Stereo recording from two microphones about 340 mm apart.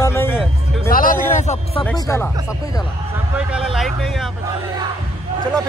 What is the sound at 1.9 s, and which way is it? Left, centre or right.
Speech, centre.